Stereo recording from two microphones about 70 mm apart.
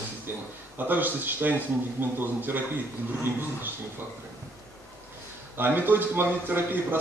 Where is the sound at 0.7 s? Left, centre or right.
Right.